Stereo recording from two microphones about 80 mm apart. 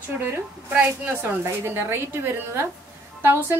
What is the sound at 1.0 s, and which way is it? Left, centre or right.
A woman's voice, right.